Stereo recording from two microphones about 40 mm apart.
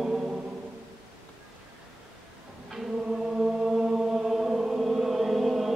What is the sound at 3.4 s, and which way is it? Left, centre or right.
Chant, centre.